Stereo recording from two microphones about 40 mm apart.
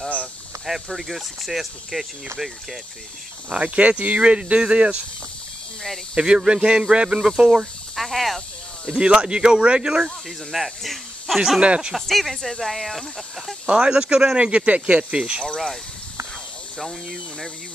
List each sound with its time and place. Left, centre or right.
0.7 s speech: centre
3.5 s speech: right
6.1 s speech: right
7.9 s speech: centre
9.0 s speech: right
10.5 s speech: centre
11.6 s speech: right
12.1 s speech: centre
13.7 s speech: right
15.4 s speech: centre